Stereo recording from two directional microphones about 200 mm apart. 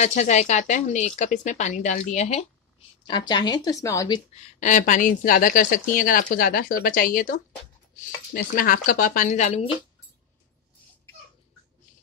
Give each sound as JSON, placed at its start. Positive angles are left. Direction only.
{"t": 0.0, "sound": "speech", "side_deg": 35}
{"t": 3.1, "sound": "a woman's voice", "side_deg": 20}
{"t": 4.6, "sound": "speech", "side_deg": 40}